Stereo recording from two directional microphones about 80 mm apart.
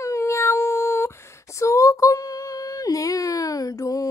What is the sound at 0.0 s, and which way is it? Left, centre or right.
Cat, left.